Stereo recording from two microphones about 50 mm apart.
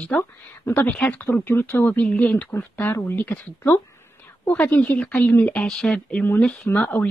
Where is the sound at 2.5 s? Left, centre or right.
Left.